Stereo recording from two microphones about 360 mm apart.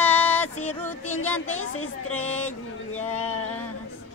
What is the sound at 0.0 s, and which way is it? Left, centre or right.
Music, centre.